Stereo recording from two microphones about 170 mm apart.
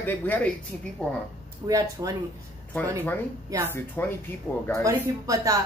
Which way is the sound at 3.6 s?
10° left (ahead or behind).